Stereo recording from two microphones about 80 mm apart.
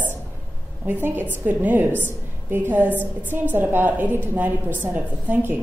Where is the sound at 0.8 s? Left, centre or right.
Right.